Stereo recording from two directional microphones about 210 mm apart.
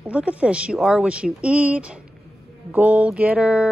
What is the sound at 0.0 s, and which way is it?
Speech, 5° right (ahead or behind).